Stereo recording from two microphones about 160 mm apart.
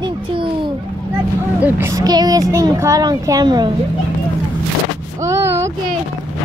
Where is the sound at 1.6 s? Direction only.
15° right (ahead or behind).